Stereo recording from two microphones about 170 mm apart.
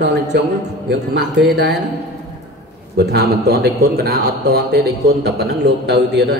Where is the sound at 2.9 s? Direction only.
75° right (ahead or behind).